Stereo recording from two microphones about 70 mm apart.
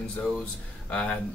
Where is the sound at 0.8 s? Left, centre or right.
Centre.